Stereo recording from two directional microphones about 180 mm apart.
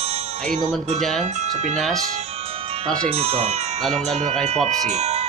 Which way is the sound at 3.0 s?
35° right (ahead or behind).